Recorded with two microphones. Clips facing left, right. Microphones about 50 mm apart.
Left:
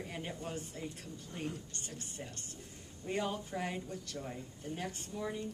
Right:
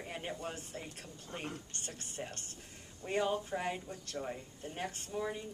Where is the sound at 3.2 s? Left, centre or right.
Centre; by 5.3 s right.